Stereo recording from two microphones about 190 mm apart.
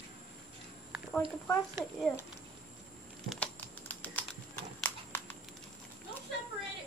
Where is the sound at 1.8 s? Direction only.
5° left (ahead or behind).